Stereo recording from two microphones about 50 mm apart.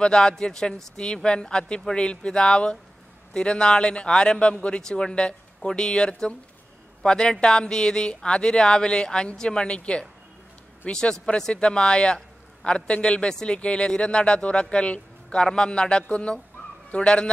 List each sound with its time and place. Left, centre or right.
0.0 s a man's voice: centre